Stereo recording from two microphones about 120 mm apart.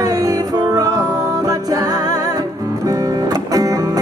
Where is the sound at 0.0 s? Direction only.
30° right (ahead or behind).